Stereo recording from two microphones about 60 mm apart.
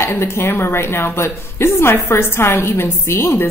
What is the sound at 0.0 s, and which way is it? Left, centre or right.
A woman's voice, left.